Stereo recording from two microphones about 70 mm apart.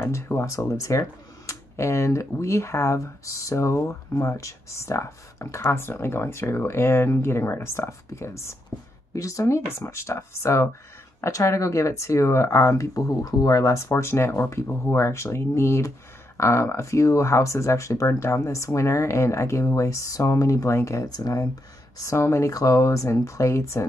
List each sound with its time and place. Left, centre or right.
0.0 s speech: left
21.0 s speech: left
22.1 s speech: left
22.5 s speech: left